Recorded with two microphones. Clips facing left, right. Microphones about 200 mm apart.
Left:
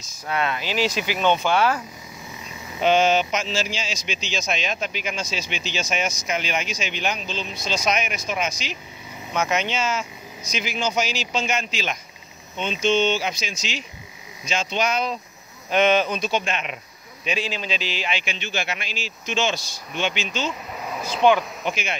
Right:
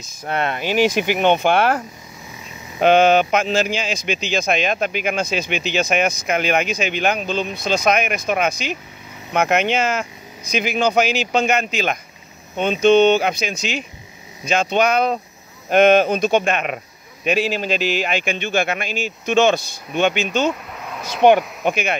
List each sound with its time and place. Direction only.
0.2 s speech: 55° right (ahead or behind)
2.8 s speech: 55° right (ahead or behind)
20.7 s a sound: 5° left (ahead or behind)
21.2 s speech: 60° right (ahead or behind)